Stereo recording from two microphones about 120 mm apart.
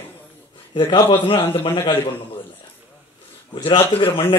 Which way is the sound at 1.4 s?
20° left (ahead or behind).